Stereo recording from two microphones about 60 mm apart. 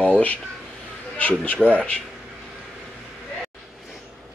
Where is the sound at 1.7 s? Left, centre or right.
Left.